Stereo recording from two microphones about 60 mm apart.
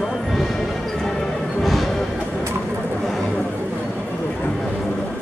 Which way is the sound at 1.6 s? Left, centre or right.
Centre.